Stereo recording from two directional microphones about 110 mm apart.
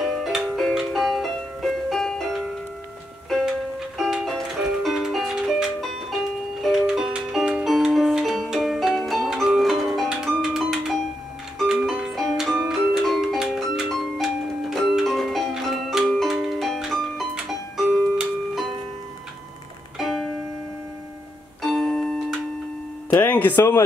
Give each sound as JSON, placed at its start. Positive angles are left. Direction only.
{"t": 0.0, "sound": "music", "side_deg": -5}
{"t": 4.0, "sound": "music", "side_deg": 0}
{"t": 17.9, "sound": "tick-tock", "side_deg": 0}
{"t": 20.0, "sound": "music", "side_deg": 0}
{"t": 21.6, "sound": "music", "side_deg": 5}
{"t": 23.2, "sound": "speech", "side_deg": 15}